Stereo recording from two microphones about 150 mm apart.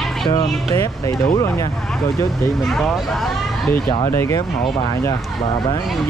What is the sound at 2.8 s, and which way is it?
Speech, 5° left (ahead or behind).